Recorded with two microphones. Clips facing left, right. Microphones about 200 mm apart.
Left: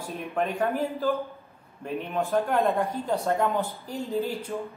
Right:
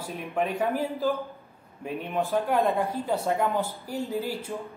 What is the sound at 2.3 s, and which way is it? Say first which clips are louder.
Speech: left 1 dB; 10° right (ahead or behind).